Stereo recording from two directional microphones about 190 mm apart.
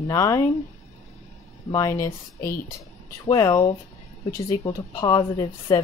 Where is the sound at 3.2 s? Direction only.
20° left (ahead or behind).